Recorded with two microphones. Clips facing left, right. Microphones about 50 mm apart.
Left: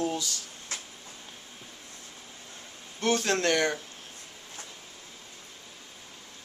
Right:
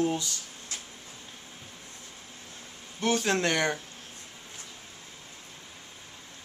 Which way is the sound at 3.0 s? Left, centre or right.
Centre.